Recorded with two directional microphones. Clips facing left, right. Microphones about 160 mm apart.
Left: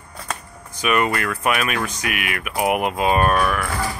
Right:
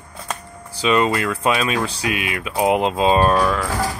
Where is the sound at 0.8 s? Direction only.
25° right (ahead or behind).